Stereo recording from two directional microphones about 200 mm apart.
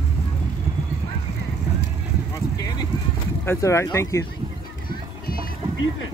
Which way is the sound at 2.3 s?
15° left (ahead or behind).